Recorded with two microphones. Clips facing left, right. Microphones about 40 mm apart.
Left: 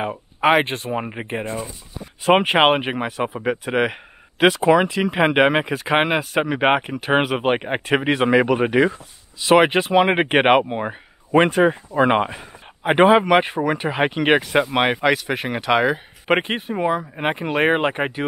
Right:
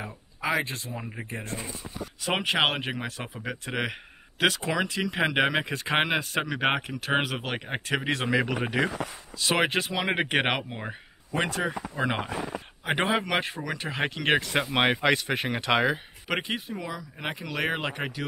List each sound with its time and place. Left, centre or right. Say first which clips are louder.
0.0 s speech: left 13 dB; left
2.2 s speech: left 10 dB; left
11.3 s speech: left 13 dB; left
12.8 s speech: left 12 dB; left; by 16.0 s centre
16.3 s speech: left 10 dB; left